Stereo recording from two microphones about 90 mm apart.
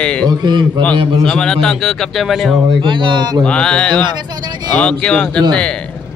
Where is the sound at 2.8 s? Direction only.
65° right (ahead or behind).